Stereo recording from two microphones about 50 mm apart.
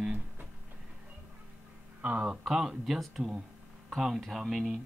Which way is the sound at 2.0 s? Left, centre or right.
Right.